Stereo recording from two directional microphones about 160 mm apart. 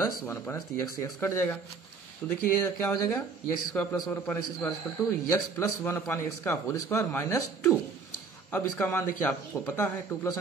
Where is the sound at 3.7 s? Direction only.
5° left (ahead or behind).